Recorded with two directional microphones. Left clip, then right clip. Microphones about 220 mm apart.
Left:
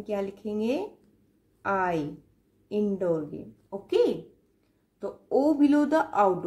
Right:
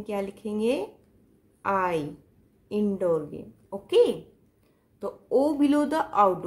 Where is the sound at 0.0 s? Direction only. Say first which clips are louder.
Even; 25° right (ahead or behind).